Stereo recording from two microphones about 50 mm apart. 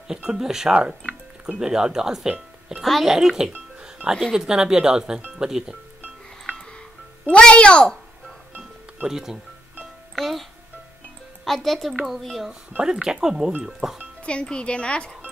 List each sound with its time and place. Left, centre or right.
0.1 s speech: centre
2.8 s speech: centre
3.8 s music: centre
4.2 s speech: centre
7.2 s speech: left
9.0 s speech: centre
10.1 s a child's voice: centre
11.4 s speech: centre
12.8 s speech: centre
14.2 s speech: left